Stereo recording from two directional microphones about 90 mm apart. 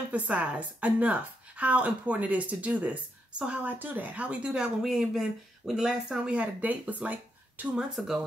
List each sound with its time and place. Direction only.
0.1 s a woman's voice: 15° right (ahead or behind)